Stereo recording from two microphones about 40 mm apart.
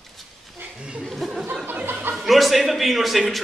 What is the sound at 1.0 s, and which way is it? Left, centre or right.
Chuckle, centre.